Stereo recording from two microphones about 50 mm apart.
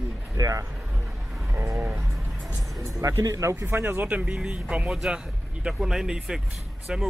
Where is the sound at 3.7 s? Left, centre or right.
Right.